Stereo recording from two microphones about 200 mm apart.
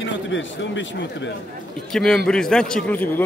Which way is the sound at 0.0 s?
65° left (ahead or behind).